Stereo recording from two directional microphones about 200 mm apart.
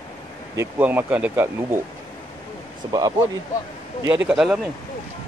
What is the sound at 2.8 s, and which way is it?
Speech, 20° right (ahead or behind).